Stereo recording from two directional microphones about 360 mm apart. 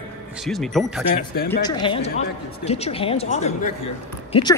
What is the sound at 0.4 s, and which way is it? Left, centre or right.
Speech, centre.